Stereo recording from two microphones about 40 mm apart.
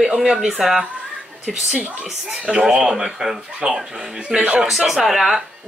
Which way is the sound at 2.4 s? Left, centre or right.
Right.